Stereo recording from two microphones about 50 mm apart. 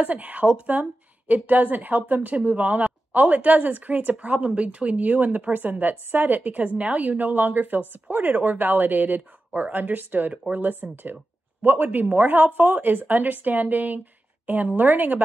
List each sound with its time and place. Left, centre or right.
0.0 s a woman's voice: right